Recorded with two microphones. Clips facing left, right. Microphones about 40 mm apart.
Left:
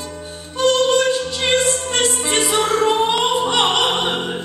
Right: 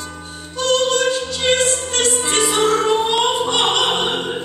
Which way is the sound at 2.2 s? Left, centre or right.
Centre.